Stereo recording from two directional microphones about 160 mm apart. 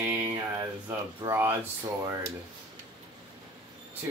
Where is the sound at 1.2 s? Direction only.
15° right (ahead or behind).